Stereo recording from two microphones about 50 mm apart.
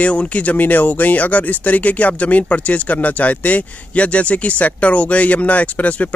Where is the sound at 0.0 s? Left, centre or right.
Left.